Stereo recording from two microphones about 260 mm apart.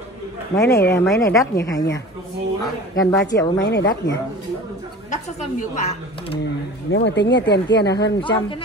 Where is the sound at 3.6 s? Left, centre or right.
Left.